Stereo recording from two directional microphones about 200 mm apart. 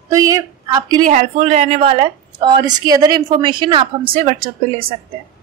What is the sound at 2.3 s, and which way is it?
A woman's voice, 20° right (ahead or behind).